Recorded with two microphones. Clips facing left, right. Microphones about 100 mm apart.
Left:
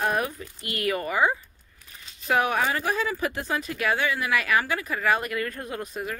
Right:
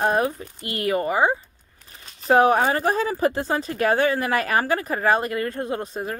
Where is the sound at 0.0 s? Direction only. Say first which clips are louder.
Right 5 dB; 30° right (ahead or behind).